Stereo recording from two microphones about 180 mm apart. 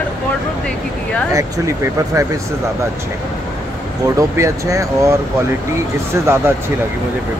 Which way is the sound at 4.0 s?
15° right (ahead or behind).